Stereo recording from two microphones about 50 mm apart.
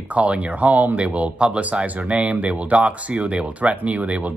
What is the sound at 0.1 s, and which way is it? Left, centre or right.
Speech, right.